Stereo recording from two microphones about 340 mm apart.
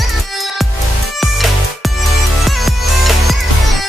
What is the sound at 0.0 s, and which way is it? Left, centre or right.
Music, centre.